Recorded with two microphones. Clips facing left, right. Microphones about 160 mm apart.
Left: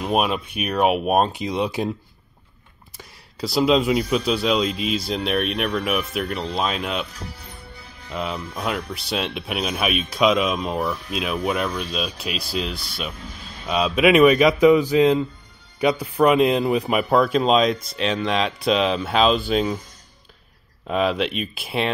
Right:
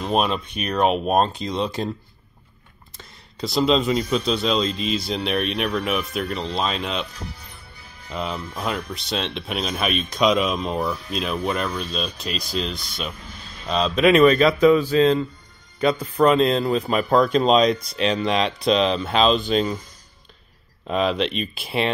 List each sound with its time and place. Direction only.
0.0 s speech: 10° left (ahead or behind)
3.0 s speech: 5° left (ahead or behind)
8.1 s speech: centre (ahead or behind)
20.8 s speech: 5° left (ahead or behind)